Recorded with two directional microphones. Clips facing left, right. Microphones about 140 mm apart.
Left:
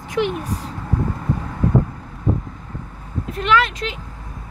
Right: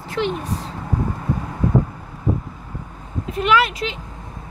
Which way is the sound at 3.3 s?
10° right (ahead or behind).